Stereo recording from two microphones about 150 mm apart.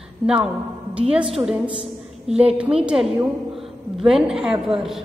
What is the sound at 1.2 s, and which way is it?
A woman's voice, 35° right (ahead or behind).